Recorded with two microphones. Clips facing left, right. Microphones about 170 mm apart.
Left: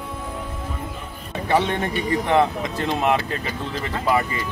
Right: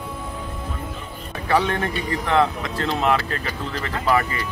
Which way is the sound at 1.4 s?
20° left (ahead or behind).